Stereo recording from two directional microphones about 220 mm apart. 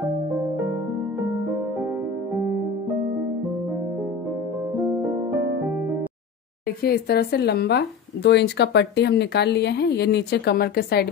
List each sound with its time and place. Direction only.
6.8 s speech: 45° left (ahead or behind)